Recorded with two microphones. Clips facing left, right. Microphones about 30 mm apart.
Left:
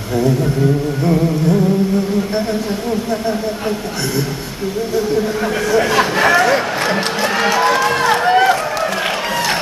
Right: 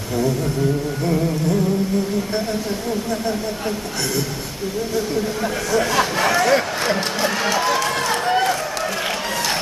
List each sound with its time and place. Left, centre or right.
1.0 s speech: centre
4.9 s speech: centre
7.3 s run: left